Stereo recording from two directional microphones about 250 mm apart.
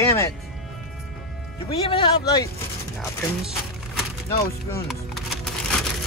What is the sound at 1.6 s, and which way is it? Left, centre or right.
Speech, centre.